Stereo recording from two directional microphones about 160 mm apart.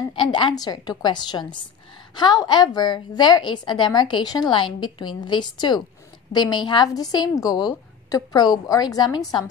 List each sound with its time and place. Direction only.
0.1 s a woman's voice: 30° left (ahead or behind)